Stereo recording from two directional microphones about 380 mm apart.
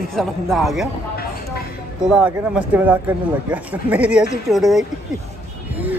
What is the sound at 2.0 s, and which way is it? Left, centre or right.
Speech, centre.